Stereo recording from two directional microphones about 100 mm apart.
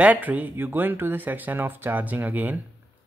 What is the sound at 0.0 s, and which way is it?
Speech, 15° right (ahead or behind).